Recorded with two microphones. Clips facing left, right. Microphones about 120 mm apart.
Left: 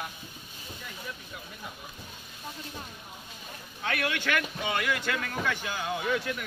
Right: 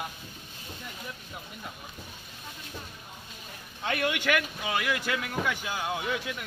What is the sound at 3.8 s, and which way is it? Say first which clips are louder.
Speech: right 2 dB; 20° right (ahead or behind).